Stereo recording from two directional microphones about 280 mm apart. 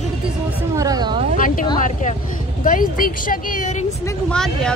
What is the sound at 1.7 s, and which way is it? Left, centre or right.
Speech, left.